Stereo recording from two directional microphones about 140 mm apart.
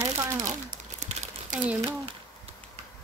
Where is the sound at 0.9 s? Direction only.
55° right (ahead or behind).